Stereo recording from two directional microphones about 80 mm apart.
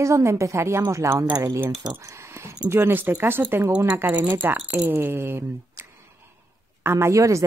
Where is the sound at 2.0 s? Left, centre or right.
Right.